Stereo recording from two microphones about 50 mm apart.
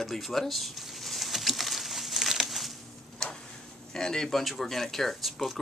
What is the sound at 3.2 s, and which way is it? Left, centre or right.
Tick-tock, centre.